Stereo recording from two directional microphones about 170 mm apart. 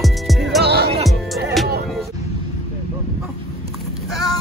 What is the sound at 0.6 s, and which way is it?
Music, 70° right (ahead or behind).